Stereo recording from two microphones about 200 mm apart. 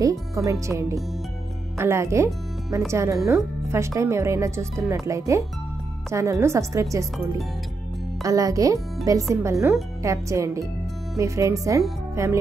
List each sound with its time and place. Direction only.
0.5 s speech: 15° right (ahead or behind)
8.2 s speech: 15° right (ahead or behind)